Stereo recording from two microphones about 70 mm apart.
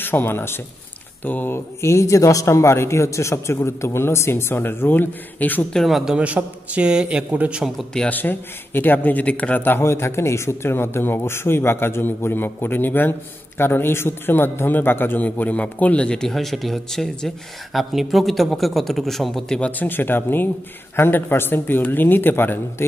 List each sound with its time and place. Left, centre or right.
0.0 s a man's voice: left
1.8 s speech: left
5.9 s a man's voice: centre
6.1 s a man's voice: centre
8.1 s a man's voice: left; by 19.6 s centre
19.6 s a man's voice: left